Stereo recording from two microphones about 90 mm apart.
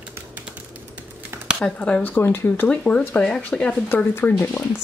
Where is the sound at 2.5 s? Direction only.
15° left (ahead or behind).